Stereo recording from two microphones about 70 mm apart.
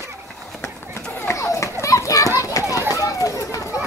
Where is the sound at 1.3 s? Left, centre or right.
Left.